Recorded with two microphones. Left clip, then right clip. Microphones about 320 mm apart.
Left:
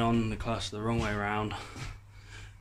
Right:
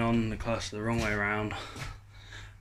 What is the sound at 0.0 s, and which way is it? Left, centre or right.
Speech, centre.